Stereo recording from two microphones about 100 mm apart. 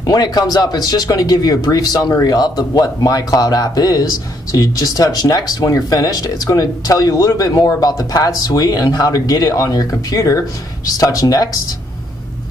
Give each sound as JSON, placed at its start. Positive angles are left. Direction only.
{"t": 0.0, "sound": "speech", "side_deg": 40}